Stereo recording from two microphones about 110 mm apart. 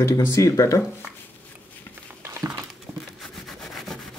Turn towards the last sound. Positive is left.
turn(degrees=5)  # may be behind; listen again after turning